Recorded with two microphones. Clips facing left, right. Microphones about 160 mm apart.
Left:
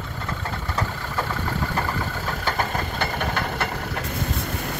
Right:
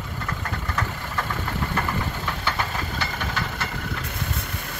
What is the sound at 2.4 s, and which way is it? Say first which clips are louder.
Engine: left 4 dB; 45° left (ahead or behind).